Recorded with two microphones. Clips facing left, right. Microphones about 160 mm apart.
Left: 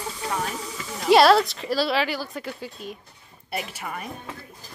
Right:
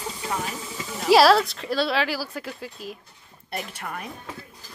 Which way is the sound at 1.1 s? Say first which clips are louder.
Even; centre (ahead or behind).